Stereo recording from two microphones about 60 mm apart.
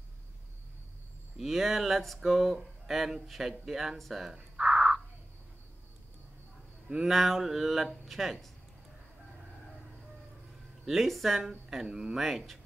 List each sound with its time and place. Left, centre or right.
1.4 s speech: centre
7.1 s mantra: centre
10.9 s mantra: centre
11.7 s speech: centre
12.2 s mantra: centre